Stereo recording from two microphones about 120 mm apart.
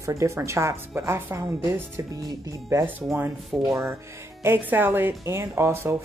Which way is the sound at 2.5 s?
25° right (ahead or behind).